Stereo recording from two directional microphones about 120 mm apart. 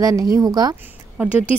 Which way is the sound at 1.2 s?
15° right (ahead or behind).